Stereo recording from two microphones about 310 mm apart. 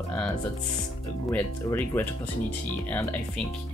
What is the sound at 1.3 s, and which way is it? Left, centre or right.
Speech, centre.